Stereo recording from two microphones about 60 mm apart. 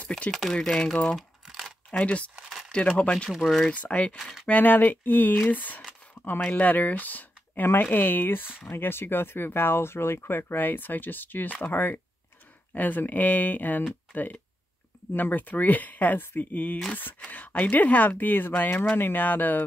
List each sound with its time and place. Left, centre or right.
0.3 s speech: centre
1.1 s crumpling: centre
1.9 s speech: left
3.4 s speech: centre
3.7 s speech: left
4.2 s speech: centre
4.5 s speech: left